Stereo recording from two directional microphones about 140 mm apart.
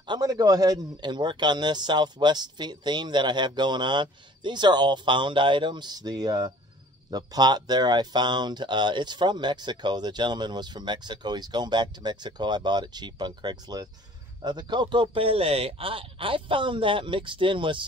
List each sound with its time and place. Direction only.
0.0 s speech: 30° right (ahead or behind)